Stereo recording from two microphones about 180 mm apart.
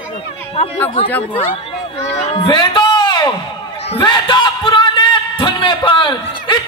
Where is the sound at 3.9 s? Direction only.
25° left (ahead or behind).